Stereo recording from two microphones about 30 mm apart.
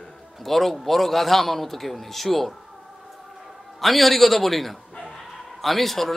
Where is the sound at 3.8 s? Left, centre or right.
Centre.